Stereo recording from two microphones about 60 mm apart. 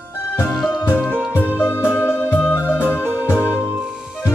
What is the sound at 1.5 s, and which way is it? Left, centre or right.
Music, left.